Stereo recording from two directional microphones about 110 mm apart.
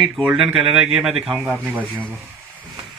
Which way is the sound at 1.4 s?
15° right (ahead or behind).